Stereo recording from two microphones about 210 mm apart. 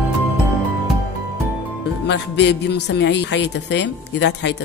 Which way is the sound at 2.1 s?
55° left (ahead or behind).